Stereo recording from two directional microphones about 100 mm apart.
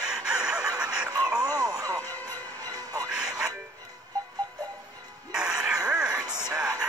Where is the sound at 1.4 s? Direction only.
40° right (ahead or behind).